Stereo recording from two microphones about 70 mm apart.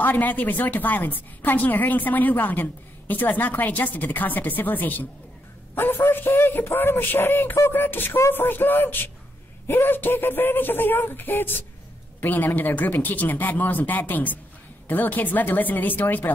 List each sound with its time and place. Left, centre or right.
0.0 s a woman's voice: left